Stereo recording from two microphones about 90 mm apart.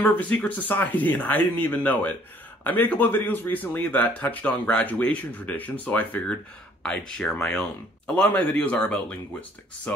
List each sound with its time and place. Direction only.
0.0 s speech: 20° left (ahead or behind)